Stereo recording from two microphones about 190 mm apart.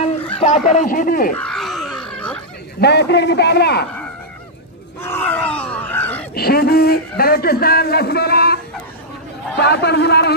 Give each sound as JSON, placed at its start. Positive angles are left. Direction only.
{"t": 0.4, "sound": "speech", "side_deg": 40}
{"t": 1.4, "sound": "a sound", "side_deg": 0}
{"t": 2.8, "sound": "a man's voice", "side_deg": 60}
{"t": 5.0, "sound": "a sound", "side_deg": 10}
{"t": 6.3, "sound": "a man's voice", "side_deg": 55}
{"t": 9.6, "sound": "a man's voice", "side_deg": 60}